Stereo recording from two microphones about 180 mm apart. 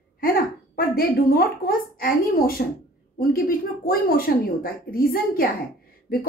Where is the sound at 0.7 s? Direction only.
55° left (ahead or behind).